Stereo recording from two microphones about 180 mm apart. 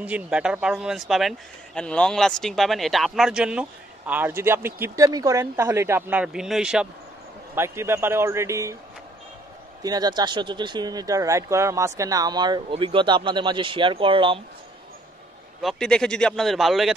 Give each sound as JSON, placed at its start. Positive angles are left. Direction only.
{"t": 0.0, "sound": "speech", "side_deg": -5}
{"t": 9.8, "sound": "speech", "side_deg": -25}
{"t": 15.6, "sound": "speech", "side_deg": 5}